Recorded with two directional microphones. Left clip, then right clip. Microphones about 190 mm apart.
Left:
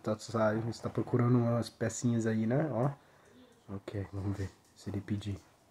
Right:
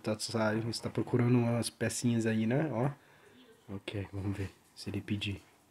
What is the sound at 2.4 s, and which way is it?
Speech, 20° right (ahead or behind).